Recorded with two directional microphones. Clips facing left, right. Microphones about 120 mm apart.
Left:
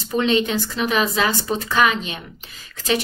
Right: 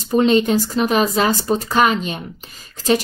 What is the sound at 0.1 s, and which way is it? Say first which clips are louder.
Speech: right 5 dB; 40° right (ahead or behind).